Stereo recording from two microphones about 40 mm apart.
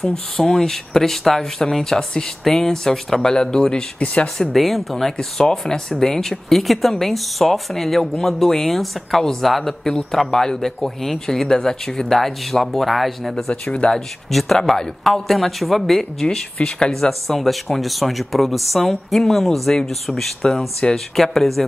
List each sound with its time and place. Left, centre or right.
0.0 s speech: centre
4.0 s speech: left
4.5 s speech: centre
5.1 s speech: centre
13.5 s speech: left
14.3 s speech: centre
16.5 s speech: left
17.4 s speech: centre